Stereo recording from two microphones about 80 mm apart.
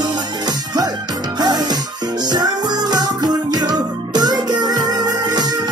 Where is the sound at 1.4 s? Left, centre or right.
Right.